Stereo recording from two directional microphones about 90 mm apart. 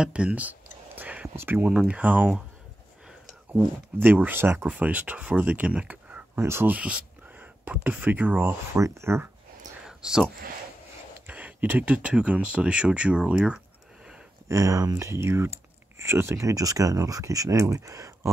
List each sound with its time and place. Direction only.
0.0 s a sound: 10° right (ahead or behind)
1.3 s speech: 25° right (ahead or behind)
1.7 s speech: 15° right (ahead or behind)
3.5 s speech: 20° right (ahead or behind)
6.3 s speech: 25° right (ahead or behind)
8.7 s speech: 35° right (ahead or behind)
9.8 s a sound: 10° right (ahead or behind)
11.2 s speech: 20° right (ahead or behind)
14.5 s speech: 35° right (ahead or behind)